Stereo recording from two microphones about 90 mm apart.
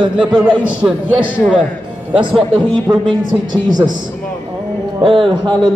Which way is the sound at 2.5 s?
65° right (ahead or behind).